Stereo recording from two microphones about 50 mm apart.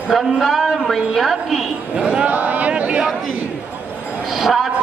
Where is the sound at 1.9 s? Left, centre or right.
Right.